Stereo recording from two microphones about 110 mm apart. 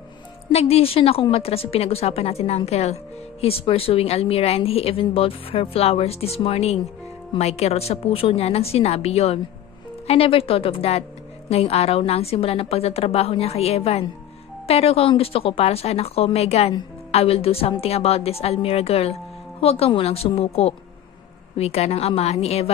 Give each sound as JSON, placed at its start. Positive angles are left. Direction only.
{"t": 0.5, "sound": "a woman's voice", "side_deg": 70}